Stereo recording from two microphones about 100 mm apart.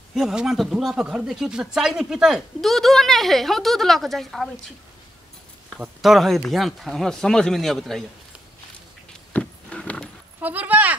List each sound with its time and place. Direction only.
0.1 s speech: 5° right (ahead or behind)
5.8 s speech: centre (ahead or behind)
9.3 s a sound: 10° left (ahead or behind)
10.4 s speech: 15° right (ahead or behind)